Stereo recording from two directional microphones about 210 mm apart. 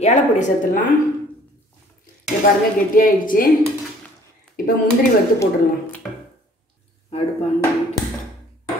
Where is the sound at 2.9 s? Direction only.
40° left (ahead or behind).